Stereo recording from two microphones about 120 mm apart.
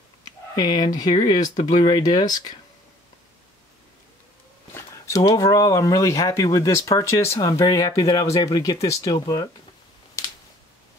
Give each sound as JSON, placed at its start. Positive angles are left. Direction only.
{"t": 0.6, "sound": "speech", "side_deg": 35}
{"t": 4.7, "sound": "speech", "side_deg": 25}
{"t": 10.2, "sound": "a sound", "side_deg": 25}